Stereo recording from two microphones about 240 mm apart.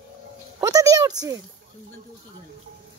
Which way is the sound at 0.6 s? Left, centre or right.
Centre.